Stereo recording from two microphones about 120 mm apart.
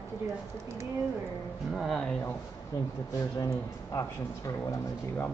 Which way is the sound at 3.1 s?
25° left (ahead or behind).